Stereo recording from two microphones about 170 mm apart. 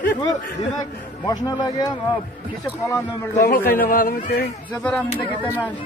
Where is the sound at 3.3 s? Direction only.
60° left (ahead or behind).